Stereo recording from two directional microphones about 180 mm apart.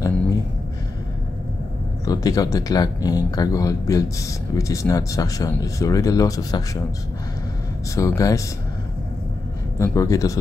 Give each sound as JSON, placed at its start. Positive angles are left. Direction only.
{"t": 2.0, "sound": "speech", "side_deg": 20}
{"t": 7.9, "sound": "speech", "side_deg": 15}
{"t": 9.8, "sound": "speech", "side_deg": 20}